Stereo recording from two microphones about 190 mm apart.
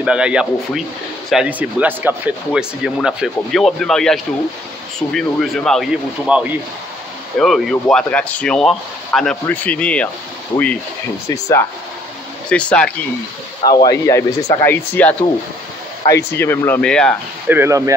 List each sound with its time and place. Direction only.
0.0 s speech: 5° right (ahead or behind)
11.2 s speech: 15° left (ahead or behind)
12.4 s speech: 5° left (ahead or behind)
13.7 s speech: 20° left (ahead or behind)
17.5 s speech: 15° right (ahead or behind)